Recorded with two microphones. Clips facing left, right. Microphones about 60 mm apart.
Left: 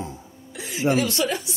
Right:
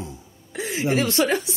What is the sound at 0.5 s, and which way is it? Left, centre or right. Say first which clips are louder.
Music: right 6 dB; right.